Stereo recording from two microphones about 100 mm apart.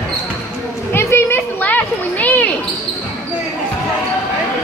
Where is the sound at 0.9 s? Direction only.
25° left (ahead or behind).